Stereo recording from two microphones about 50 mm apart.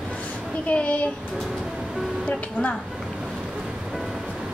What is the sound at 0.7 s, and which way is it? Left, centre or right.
Speech, left.